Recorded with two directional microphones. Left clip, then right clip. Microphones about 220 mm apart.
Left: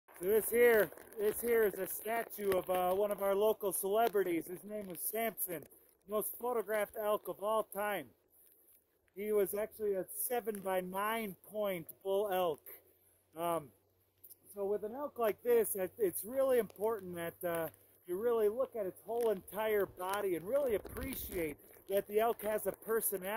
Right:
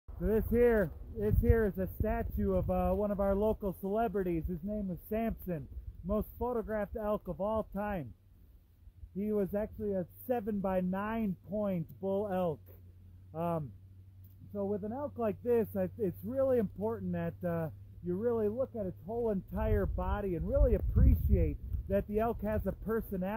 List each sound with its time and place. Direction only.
0.3 s speech: 15° left (ahead or behind)
6.0 s speech: 15° left (ahead or behind)
9.1 s speech: 15° left (ahead or behind)
21.9 s speech: 15° left (ahead or behind)